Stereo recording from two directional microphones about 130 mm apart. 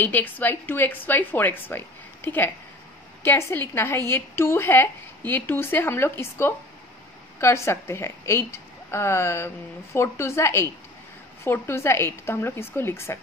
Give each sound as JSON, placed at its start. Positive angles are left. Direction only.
{"t": 0.0, "sound": "a woman's voice", "side_deg": 15}